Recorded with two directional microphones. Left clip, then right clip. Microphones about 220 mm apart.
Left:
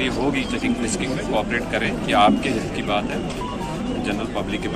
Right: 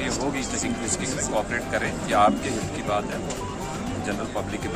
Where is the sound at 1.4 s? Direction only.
10° right (ahead or behind).